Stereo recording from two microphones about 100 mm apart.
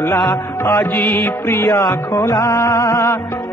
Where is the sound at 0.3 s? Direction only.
25° left (ahead or behind).